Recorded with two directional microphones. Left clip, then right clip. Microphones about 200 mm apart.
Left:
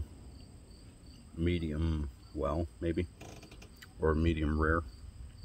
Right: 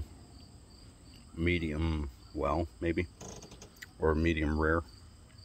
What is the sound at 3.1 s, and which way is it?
Cricket, 25° right (ahead or behind).